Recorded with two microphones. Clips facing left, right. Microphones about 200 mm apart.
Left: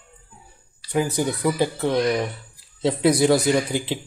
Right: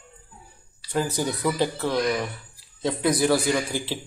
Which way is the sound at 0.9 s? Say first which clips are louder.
Left 3 dB; 15° left (ahead or behind).